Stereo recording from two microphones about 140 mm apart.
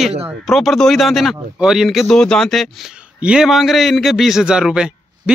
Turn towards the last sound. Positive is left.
turn(degrees=-5)  # may be behind; listen again after turning